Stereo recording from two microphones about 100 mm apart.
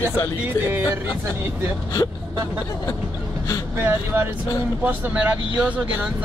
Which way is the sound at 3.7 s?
25° right (ahead or behind).